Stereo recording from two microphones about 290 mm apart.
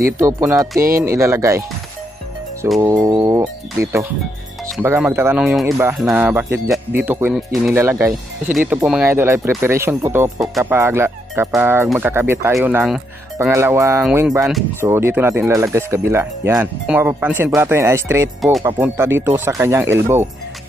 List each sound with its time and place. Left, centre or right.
0.2 s speech: centre
2.6 s speech: centre